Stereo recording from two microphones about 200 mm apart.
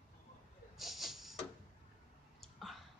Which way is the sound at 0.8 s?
Centre (ahead or behind).